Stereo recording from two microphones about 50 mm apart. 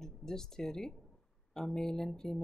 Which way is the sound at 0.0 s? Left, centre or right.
Centre.